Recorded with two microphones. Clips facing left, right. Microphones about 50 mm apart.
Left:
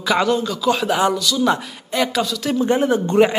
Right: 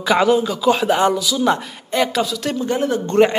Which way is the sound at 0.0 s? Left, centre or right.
Centre.